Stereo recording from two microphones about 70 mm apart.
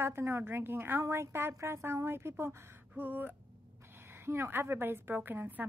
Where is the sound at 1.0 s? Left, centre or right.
Right.